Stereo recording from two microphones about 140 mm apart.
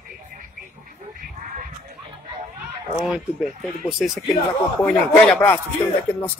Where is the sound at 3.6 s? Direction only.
Centre (ahead or behind).